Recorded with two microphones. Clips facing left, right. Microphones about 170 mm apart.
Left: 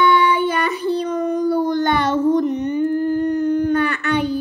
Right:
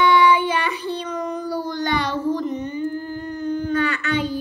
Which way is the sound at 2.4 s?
65° left (ahead or behind).